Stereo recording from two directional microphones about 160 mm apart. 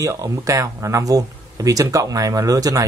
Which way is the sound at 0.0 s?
20° right (ahead or behind).